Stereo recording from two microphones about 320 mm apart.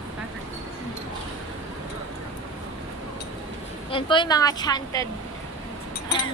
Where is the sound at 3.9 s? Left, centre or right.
Centre.